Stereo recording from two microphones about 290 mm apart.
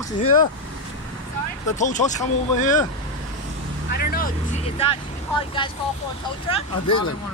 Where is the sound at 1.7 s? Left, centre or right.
Left.